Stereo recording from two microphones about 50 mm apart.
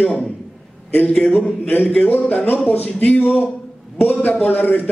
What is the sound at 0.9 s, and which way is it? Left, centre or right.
A man's voice, left.